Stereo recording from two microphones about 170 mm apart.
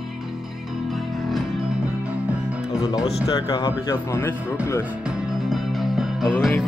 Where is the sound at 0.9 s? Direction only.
Centre (ahead or behind).